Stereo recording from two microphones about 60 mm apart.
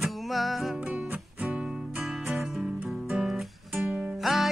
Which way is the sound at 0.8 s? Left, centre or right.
Right.